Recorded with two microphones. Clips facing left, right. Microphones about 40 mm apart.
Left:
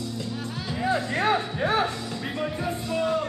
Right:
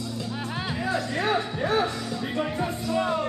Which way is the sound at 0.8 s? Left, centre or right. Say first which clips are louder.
Left 3 dB; left.